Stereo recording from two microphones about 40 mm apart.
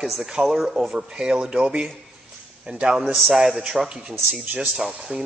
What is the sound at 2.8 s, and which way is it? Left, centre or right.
Speech, centre.